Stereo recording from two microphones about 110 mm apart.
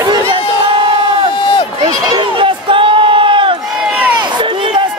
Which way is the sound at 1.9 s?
45° right (ahead or behind).